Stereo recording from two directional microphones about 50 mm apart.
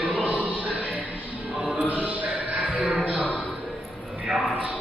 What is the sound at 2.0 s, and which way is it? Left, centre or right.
Music, right.